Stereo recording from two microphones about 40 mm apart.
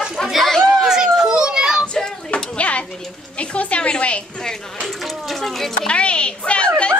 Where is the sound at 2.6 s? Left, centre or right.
Left.